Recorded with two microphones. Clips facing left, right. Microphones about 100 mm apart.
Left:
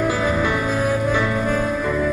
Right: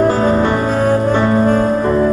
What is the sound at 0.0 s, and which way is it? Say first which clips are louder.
Music: right 7 dB; 45° right (ahead or behind).